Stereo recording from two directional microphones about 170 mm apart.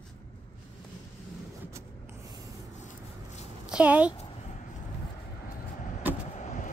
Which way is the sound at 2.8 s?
45° left (ahead or behind).